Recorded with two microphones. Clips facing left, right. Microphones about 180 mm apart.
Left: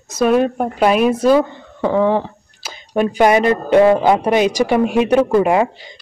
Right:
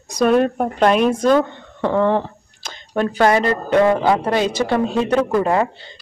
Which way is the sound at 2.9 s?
15° left (ahead or behind).